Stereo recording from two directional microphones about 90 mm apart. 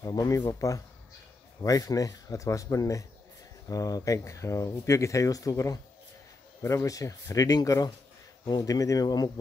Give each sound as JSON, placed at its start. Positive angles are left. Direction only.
{"t": 0.0, "sound": "speech", "side_deg": 40}